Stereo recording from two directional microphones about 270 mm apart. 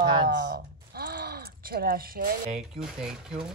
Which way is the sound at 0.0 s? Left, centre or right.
Centre.